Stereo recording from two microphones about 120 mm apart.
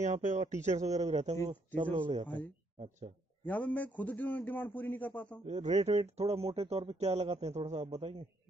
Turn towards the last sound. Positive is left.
turn(degrees=-60)  # may be behind; listen again after turning